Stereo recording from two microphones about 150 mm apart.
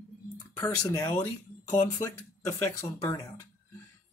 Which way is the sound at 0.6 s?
25° left (ahead or behind).